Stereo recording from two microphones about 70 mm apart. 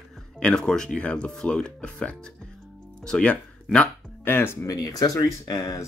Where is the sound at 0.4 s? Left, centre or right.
Centre.